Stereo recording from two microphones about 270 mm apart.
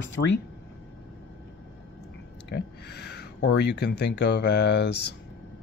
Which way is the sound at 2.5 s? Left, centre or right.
Left.